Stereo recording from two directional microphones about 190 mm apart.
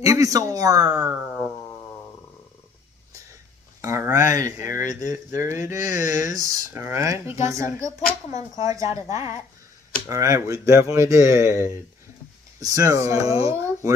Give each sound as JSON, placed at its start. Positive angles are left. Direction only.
{"t": 0.0, "sound": "speech", "side_deg": -15}
{"t": 0.9, "sound": "a sound", "side_deg": -5}
{"t": 3.8, "sound": "speech", "side_deg": -15}
{"t": 8.0, "sound": "speech", "side_deg": 40}
{"t": 8.6, "sound": "speech", "side_deg": -15}